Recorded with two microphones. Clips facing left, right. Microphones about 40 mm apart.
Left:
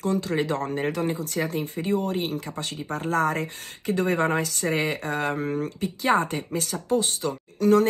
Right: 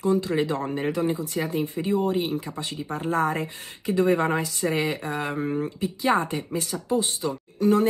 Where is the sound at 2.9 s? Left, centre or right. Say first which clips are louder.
Even; right.